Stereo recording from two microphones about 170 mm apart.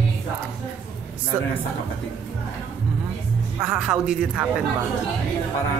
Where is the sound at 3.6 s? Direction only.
5° right (ahead or behind).